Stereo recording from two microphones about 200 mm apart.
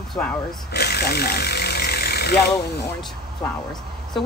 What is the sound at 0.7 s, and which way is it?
Speech, 55° left (ahead or behind).